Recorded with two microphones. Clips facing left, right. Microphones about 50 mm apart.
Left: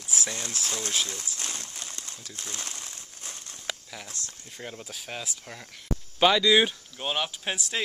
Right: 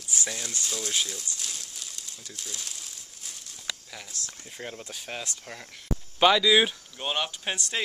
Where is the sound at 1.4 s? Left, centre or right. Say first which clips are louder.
Left 2 dB; left.